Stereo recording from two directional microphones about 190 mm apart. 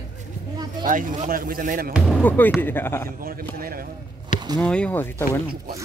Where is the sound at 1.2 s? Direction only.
45° right (ahead or behind).